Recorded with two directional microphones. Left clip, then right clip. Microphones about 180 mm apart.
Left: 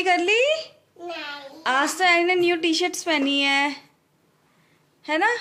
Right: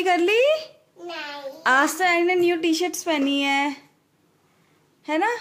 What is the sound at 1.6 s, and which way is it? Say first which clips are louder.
Speech: right 3 dB; 25° right (ahead or behind).